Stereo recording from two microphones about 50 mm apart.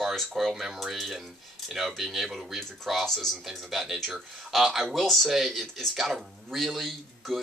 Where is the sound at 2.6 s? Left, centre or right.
Centre.